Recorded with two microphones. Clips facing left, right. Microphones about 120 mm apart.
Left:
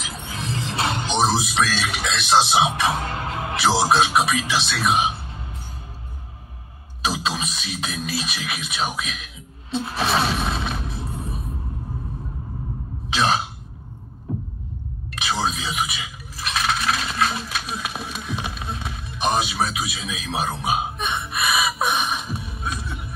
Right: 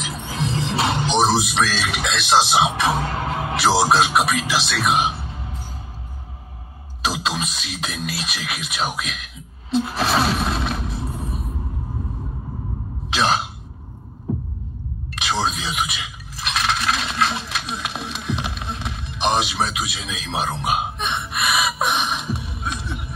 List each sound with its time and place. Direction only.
0.3 s music: 30° right (ahead or behind)
1.1 s speech: centre (ahead or behind)
3.0 s music: 30° right (ahead or behind)
3.9 s speech: centre (ahead or behind)
7.0 s music: centre (ahead or behind)
13.1 s cough: centre (ahead or behind)
15.1 s a sound: centre (ahead or behind)